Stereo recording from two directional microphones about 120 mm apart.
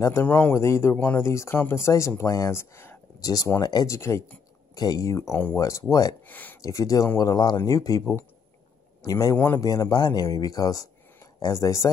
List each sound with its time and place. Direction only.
0.0 s speech: 20° left (ahead or behind)
5.6 s speech: 30° left (ahead or behind)
6.2 s a sound: 15° left (ahead or behind)
6.6 s speech: 25° left (ahead or behind)
8.0 s speech: 20° left (ahead or behind)
9.0 s speech: 30° left (ahead or behind)